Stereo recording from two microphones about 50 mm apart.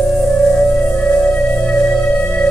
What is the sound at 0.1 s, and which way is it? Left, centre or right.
Music, centre.